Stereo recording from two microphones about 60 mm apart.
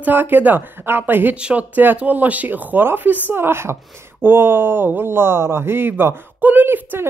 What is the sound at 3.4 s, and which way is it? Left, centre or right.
A woman's voice, right.